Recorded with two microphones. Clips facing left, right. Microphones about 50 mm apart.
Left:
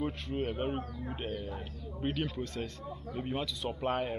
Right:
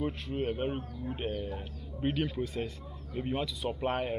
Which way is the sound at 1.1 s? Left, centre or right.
Centre.